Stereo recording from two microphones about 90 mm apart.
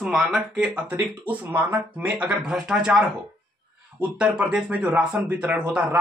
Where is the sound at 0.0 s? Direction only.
5° right (ahead or behind).